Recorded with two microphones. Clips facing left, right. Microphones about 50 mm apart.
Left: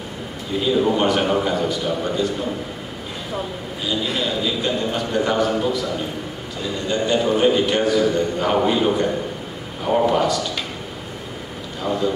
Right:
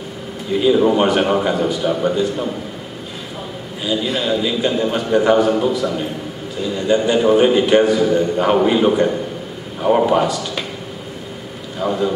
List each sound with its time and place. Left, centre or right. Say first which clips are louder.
0.7 s a man's voice: right 4 dB; centre
3.8 s a man's voice: right 4 dB; centre
6.9 s a man's voice: right 6 dB; centre
9.8 s a man's voice: right 4 dB; centre
11.8 s a man's voice: right 2 dB; centre